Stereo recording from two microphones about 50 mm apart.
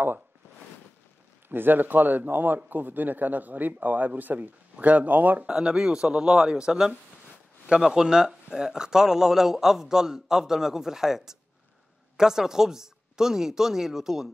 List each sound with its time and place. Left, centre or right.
1.5 s speech: right
5.5 s speech: centre